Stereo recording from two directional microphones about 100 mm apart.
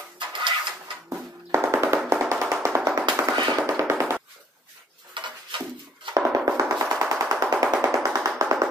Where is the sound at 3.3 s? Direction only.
45° right (ahead or behind).